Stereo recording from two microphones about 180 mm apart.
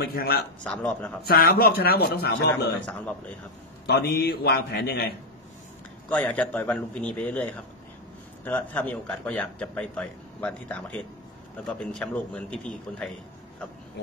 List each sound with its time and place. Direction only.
0.0 s a man's voice: 60° left (ahead or behind)
0.7 s a man's voice: 5° left (ahead or behind)
1.2 s a man's voice: 55° left (ahead or behind)
3.8 s a man's voice: 65° left (ahead or behind)
6.0 s a man's voice: 5° left (ahead or behind)
8.5 s a man's voice: 5° left (ahead or behind)